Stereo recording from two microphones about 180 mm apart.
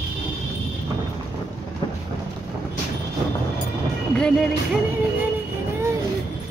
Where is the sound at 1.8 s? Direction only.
25° left (ahead or behind).